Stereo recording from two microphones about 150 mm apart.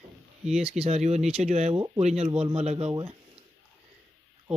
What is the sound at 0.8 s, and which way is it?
Speech, 45° right (ahead or behind).